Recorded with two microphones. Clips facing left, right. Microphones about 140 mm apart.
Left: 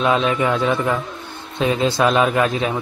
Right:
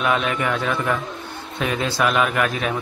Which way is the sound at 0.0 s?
25° left (ahead or behind).